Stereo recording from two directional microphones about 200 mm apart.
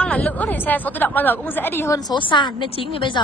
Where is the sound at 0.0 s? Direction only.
5° left (ahead or behind).